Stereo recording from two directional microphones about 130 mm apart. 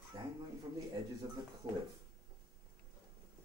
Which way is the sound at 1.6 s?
35° right (ahead or behind).